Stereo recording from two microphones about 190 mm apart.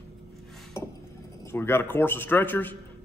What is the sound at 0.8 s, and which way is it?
Glass, 15° left (ahead or behind).